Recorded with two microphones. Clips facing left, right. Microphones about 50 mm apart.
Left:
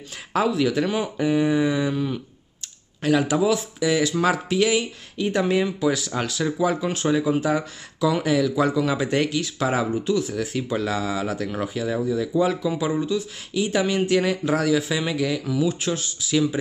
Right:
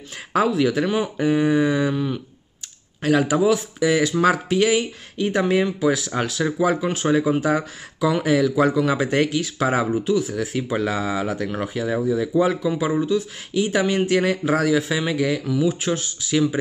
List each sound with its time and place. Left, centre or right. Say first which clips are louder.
0.3 s speech: right 2 dB; centre